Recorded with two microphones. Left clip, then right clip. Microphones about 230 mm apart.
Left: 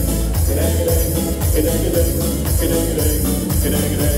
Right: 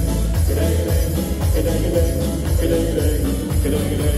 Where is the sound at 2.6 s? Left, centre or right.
Left.